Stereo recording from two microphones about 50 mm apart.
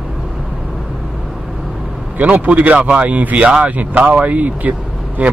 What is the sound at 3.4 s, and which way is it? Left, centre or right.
Speech, right.